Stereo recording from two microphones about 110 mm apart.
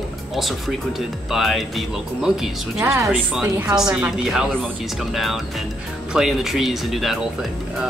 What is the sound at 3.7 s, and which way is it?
A woman's voice, 5° right (ahead or behind).